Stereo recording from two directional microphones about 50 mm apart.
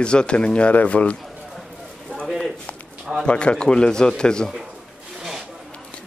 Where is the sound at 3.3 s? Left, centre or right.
Left.